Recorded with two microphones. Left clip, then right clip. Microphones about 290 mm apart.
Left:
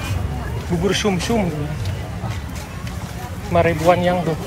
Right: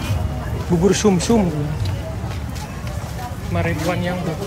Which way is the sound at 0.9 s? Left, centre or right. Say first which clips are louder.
Right 3 dB; centre.